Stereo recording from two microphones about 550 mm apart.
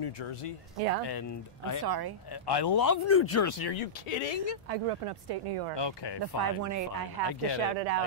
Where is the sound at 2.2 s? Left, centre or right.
Left.